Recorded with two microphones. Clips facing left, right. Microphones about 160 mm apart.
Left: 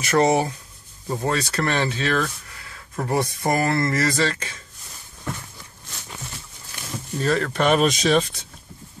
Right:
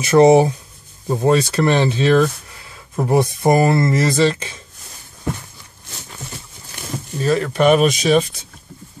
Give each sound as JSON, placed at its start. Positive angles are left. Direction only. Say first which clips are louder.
{"t": 0.0, "sound": "speech", "louder": "right 8 dB", "side_deg": -20}
{"t": 7.2, "sound": "speech", "louder": "right 4 dB", "side_deg": -10}